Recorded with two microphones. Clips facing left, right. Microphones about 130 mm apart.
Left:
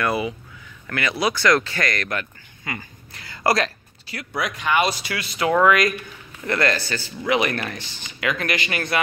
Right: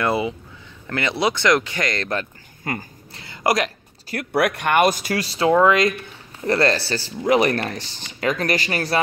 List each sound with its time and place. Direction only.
0.0 s speech: 25° right (ahead or behind)
2.6 s speech: 45° right (ahead or behind)
3.2 s speech: 20° right (ahead or behind)
4.1 s speech: 60° right (ahead or behind); by 5.5 s 35° right (ahead or behind)
5.5 s speech: 25° right (ahead or behind)